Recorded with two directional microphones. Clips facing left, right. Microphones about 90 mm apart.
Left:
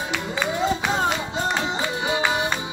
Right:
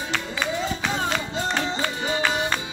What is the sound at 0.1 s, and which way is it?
Music, 15° left (ahead or behind).